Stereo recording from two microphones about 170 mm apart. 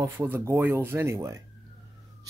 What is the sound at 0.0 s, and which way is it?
A man's voice, 15° right (ahead or behind).